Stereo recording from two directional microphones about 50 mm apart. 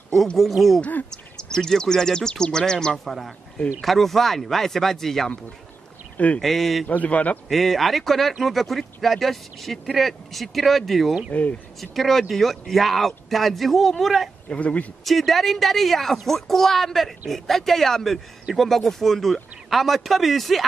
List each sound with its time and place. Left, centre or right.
0.4 s speech: centre
1.5 s speech: centre
3.1 s speech: centre
6.1 s speech: left
6.4 s speech: centre
6.9 s a man's voice: left
7.4 s speech: centre
14.5 s speech: left
15.0 s speech: centre